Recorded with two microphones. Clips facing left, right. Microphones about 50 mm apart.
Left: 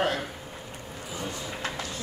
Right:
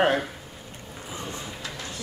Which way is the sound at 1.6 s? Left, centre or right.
Left.